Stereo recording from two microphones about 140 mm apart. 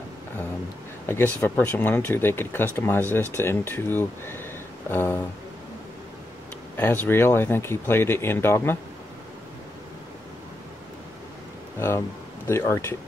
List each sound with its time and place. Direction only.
1.0 s speech: 15° left (ahead or behind)
4.8 s a sound: 15° left (ahead or behind)
6.8 s speech: 15° left (ahead or behind)
12.4 s speech: 20° left (ahead or behind)